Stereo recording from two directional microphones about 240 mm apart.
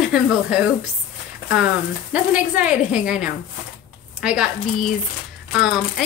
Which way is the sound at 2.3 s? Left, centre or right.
Centre.